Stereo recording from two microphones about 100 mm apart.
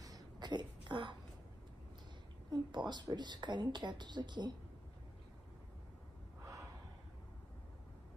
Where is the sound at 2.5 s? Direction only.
50° right (ahead or behind).